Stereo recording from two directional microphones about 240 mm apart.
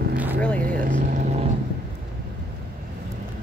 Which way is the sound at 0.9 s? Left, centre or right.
Right.